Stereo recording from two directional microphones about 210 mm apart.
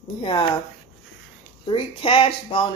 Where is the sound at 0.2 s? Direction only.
25° left (ahead or behind).